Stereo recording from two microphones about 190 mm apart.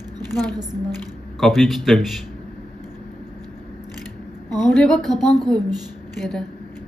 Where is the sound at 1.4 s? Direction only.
Centre (ahead or behind).